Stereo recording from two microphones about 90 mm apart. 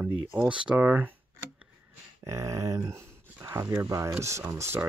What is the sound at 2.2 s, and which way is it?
Speech, 35° right (ahead or behind).